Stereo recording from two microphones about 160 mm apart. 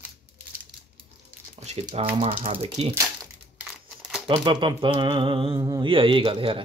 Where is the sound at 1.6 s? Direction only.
40° right (ahead or behind).